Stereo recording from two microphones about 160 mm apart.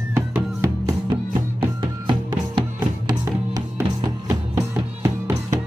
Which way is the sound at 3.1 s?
25° right (ahead or behind).